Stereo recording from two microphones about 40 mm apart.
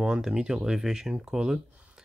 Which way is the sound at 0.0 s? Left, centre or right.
Right.